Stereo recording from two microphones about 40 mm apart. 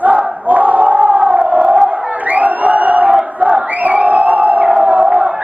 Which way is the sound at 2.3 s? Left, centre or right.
Right.